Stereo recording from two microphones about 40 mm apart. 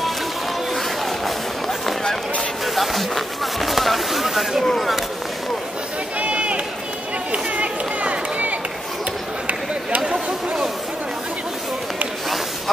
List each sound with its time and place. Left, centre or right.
1.2 s run: centre
2.6 s speech: centre
4.6 s speech: centre
6.1 s run: right
10.0 s a sound: centre